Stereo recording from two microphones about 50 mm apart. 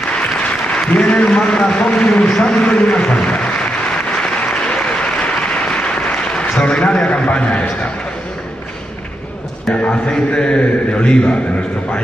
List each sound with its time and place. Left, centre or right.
0.3 s applause: centre
1.7 s a man's voice: left
4.2 s applause: left
6.6 s a man's voice: left
9.8 s a man's voice: left